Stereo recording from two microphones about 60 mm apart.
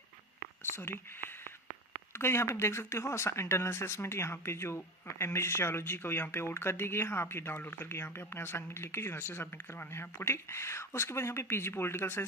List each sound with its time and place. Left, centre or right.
2.1 s speech: left
6.4 s speech: left